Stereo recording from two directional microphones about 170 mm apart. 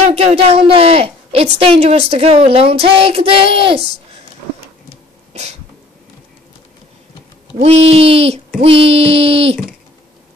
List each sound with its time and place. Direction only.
0.1 s a woman's voice: 40° right (ahead or behind)
5.3 s sneeze: 40° right (ahead or behind)
7.6 s a woman's voice: 35° right (ahead or behind)